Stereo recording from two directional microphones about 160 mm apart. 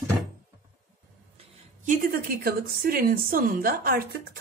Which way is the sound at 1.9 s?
65° right (ahead or behind).